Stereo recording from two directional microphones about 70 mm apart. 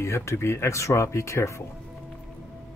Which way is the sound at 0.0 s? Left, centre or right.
Left.